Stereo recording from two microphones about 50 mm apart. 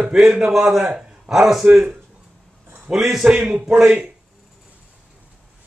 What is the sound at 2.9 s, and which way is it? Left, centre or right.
Speech, centre.